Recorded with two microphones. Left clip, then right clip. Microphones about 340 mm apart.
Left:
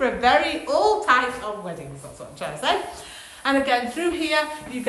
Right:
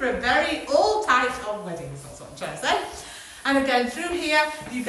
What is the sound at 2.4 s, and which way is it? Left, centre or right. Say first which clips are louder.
Speech: left 1 dB; centre.